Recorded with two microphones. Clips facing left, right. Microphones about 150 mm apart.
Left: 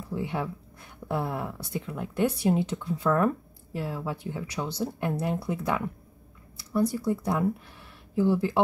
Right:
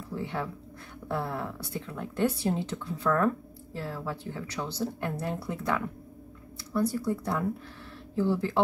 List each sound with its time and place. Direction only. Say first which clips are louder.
0.1 s speech: left 3 dB; 10° left (ahead or behind)